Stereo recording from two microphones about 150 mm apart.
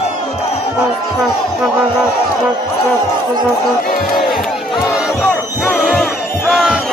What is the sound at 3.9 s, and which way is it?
Speech, 75° left (ahead or behind).